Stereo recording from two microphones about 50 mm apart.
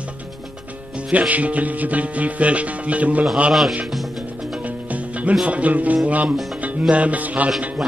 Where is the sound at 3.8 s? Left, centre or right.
Centre.